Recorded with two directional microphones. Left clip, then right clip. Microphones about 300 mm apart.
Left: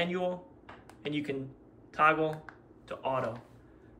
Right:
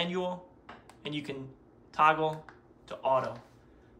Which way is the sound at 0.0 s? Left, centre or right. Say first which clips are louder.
Left 1 dB; centre.